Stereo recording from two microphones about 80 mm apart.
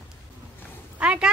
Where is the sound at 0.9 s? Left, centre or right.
Centre.